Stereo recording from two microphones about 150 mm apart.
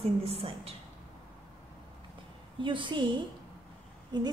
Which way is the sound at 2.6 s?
35° right (ahead or behind).